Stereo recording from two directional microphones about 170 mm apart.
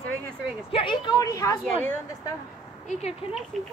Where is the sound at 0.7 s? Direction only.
30° left (ahead or behind).